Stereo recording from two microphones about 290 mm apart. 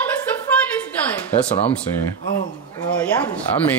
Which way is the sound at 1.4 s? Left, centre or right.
Left.